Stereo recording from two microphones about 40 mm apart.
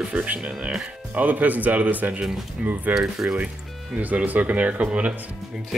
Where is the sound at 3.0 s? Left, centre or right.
Centre.